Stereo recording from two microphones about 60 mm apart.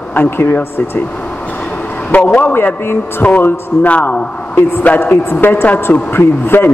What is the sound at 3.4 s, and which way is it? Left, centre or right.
Speech, left.